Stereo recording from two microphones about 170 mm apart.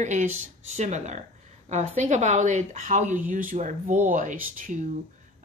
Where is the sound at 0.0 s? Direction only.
45° right (ahead or behind).